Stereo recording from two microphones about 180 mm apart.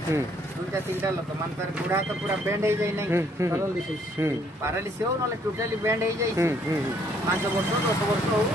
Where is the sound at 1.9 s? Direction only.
15° right (ahead or behind).